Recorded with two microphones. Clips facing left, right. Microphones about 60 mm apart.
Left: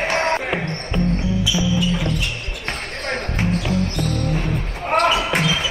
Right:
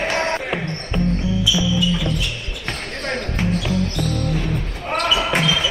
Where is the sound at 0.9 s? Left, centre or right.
Centre.